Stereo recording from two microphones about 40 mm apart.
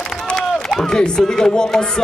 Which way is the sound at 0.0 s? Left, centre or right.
Centre.